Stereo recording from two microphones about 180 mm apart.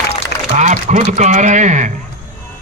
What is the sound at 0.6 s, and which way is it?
A man's voice, 40° right (ahead or behind).